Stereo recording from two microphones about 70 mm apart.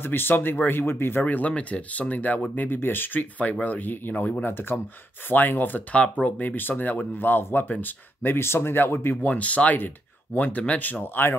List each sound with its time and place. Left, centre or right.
0.0 s speech: left
1.2 s a man's voice: centre; by 9.2 s left
9.2 s a man's voice: left